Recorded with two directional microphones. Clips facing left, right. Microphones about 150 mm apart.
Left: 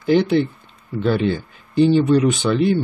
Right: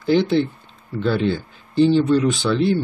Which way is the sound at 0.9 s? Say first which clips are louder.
Left 1 dB; 15° left (ahead or behind).